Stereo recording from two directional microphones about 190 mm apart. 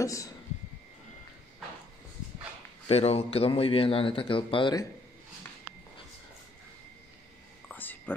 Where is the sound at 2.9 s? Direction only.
30° left (ahead or behind).